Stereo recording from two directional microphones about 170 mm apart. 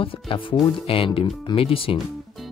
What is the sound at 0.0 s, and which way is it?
Speech, 30° left (ahead or behind).